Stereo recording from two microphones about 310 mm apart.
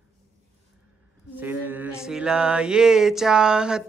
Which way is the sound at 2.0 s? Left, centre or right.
Centre.